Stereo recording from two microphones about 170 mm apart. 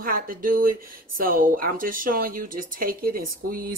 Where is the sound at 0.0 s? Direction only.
55° right (ahead or behind).